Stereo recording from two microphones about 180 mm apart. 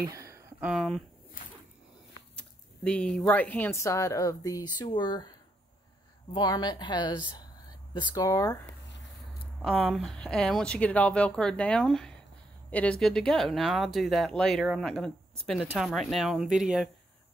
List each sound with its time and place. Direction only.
0.0 s a sound: 15° right (ahead or behind); by 1.0 s centre (ahead or behind)
2.3 s a woman's voice: 5° left (ahead or behind); by 5.3 s 25° left (ahead or behind)
6.3 s a woman's voice: 20° left (ahead or behind)
9.6 s speech: 5° right (ahead or behind)